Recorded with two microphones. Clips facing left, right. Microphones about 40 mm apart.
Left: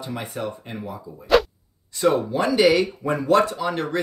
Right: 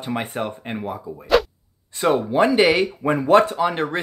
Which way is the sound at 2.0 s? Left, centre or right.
Right.